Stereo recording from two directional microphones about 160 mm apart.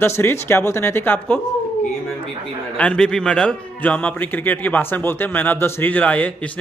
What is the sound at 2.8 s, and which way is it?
A man's voice, 5° left (ahead or behind).